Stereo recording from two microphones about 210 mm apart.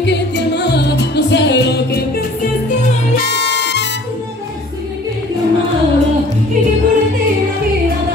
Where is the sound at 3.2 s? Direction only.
55° left (ahead or behind).